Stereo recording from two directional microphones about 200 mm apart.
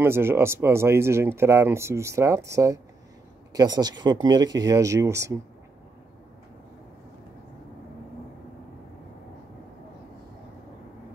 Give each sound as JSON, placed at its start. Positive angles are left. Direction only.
{"t": 0.0, "sound": "speech", "side_deg": -10}